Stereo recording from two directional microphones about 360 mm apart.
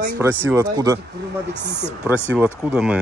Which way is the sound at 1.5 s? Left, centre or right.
Centre.